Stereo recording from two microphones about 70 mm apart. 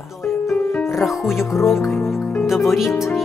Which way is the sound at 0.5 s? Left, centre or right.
Left.